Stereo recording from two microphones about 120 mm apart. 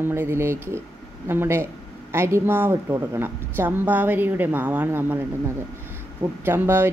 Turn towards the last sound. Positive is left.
turn(degrees=-20)  # may be behind; listen again after turning